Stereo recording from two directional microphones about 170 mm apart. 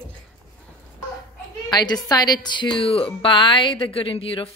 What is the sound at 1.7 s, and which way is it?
Speech, 25° left (ahead or behind).